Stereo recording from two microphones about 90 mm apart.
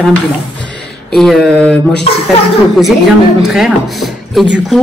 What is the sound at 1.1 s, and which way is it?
Speech, 5° left (ahead or behind).